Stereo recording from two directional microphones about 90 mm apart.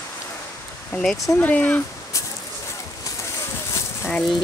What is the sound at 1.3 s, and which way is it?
Speech, 20° left (ahead or behind).